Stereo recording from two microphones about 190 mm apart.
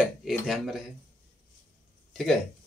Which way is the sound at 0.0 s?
Centre (ahead or behind).